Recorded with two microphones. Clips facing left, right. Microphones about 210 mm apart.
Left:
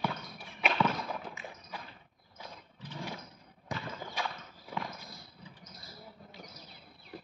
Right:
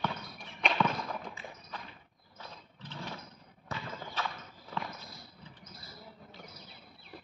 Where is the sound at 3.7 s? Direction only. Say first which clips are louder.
Left 2 dB; 15° left (ahead or behind).